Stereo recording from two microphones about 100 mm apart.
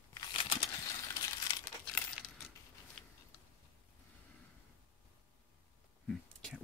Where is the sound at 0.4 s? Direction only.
55° left (ahead or behind).